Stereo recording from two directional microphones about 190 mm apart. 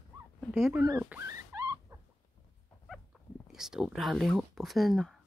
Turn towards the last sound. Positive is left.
turn(degrees=0)  # may be behind; listen again after turning